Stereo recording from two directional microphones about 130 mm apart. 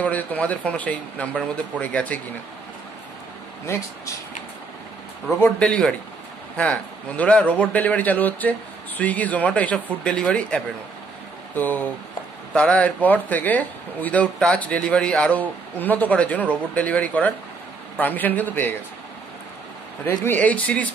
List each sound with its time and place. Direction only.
0.0 s speech: 10° left (ahead or behind)
3.7 s speech: 20° left (ahead or behind)
5.4 s speech: 10° left (ahead or behind)
20.1 s speech: 15° left (ahead or behind)